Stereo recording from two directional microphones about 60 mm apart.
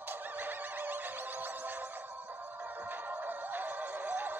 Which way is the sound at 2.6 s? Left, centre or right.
Right.